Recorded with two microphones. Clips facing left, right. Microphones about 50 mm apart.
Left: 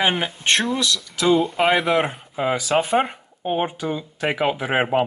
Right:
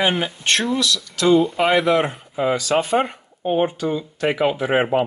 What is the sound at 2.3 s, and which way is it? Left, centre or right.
Speech, centre.